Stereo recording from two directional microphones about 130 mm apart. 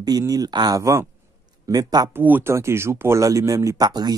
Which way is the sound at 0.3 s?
30° right (ahead or behind).